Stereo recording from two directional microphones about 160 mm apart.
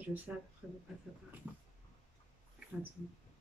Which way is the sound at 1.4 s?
10° right (ahead or behind).